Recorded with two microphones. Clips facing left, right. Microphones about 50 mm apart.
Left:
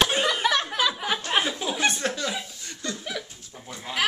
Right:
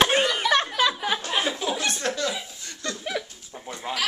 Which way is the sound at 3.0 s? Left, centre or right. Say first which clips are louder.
Right 3 dB; centre.